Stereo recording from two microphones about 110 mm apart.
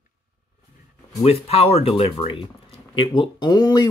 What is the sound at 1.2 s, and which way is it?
Speech, 70° left (ahead or behind).